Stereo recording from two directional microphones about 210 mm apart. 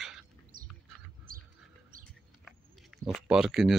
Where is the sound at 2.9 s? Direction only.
5° right (ahead or behind).